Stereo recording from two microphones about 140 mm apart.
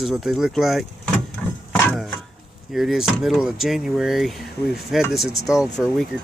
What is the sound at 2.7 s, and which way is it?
Speech, centre (ahead or behind).